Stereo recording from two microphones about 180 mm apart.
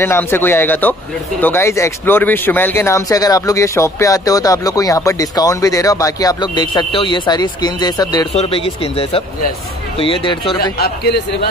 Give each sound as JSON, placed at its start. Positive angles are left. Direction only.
{"t": 0.0, "sound": "speech", "side_deg": 15}